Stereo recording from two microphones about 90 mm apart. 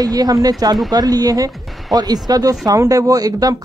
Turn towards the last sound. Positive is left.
turn(degrees=-40)  # may be behind; listen again after turning